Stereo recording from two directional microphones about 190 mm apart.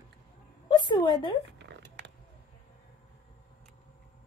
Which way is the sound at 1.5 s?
65° right (ahead or behind).